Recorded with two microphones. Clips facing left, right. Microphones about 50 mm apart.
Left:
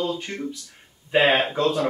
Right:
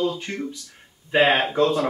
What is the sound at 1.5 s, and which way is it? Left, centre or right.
Speech, centre.